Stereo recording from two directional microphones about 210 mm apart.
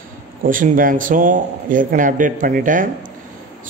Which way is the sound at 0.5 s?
40° right (ahead or behind).